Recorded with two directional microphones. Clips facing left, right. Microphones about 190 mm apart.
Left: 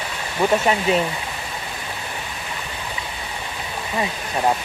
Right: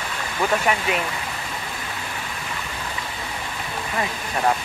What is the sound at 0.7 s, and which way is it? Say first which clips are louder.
Speech: left 4 dB; 30° left (ahead or behind).